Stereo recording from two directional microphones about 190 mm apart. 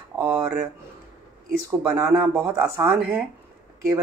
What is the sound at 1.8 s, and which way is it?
Speech, 15° right (ahead or behind).